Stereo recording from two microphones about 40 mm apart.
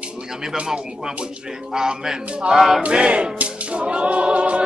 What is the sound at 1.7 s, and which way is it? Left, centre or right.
A man's voice, centre.